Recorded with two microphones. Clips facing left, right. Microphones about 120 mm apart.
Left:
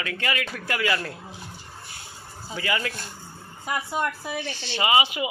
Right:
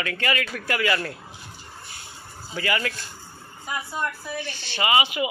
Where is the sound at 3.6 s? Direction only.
75° left (ahead or behind).